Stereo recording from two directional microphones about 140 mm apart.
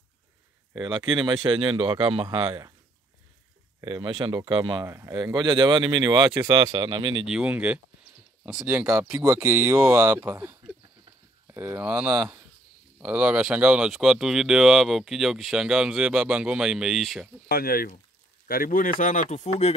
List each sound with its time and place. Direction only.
0.8 s speech: 35° right (ahead or behind)
3.8 s speech: 35° right (ahead or behind)
4.8 s speech: 20° right (ahead or behind)
5.2 s speech: 30° right (ahead or behind)
7.2 s speech: 10° right (ahead or behind)
9.1 s speech: 20° right (ahead or behind)
10.0 s speech: 15° right (ahead or behind)
17.5 s speech: 90° left; by 19.7 s 55° left (ahead or behind)